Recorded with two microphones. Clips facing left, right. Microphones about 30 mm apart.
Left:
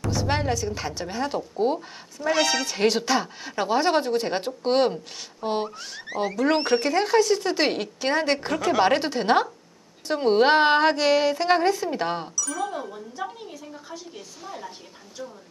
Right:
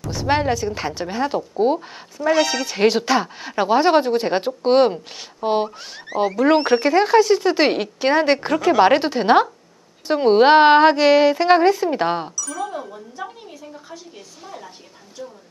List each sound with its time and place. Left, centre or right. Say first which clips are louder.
0.1 s speech: right 6 dB; centre
2.7 s a woman's voice: right 5 dB; centre
12.4 s speech: right 1 dB; centre